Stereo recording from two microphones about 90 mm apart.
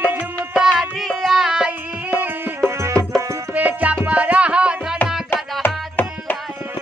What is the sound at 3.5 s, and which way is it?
Music, 15° right (ahead or behind).